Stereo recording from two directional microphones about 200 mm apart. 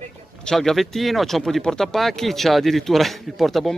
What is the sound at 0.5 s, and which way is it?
A man's voice, centre (ahead or behind).